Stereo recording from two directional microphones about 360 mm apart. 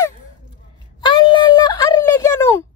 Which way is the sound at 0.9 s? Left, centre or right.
Centre.